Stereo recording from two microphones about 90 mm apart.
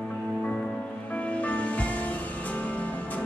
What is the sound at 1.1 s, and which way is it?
Music, 15° left (ahead or behind).